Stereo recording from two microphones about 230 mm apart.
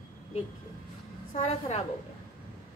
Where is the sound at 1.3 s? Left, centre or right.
Left.